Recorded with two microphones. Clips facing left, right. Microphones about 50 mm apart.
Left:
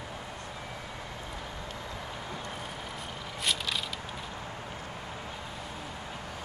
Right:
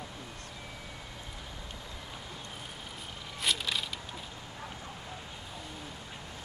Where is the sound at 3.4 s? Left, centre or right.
Centre.